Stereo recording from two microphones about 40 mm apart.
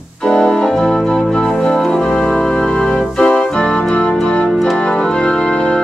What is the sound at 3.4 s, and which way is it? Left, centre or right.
Keyboard, left.